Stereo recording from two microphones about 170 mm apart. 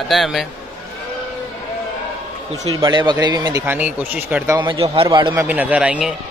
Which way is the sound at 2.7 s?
25° right (ahead or behind).